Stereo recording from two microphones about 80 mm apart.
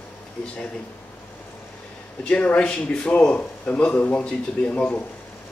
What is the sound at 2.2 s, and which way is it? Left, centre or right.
A man's voice, centre.